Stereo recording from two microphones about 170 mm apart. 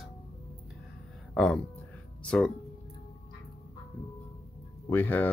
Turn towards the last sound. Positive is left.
turn(degrees=10)  # may be behind; listen again after turning